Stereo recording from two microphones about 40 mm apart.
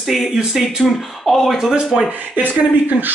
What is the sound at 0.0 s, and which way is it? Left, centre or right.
Speech, centre.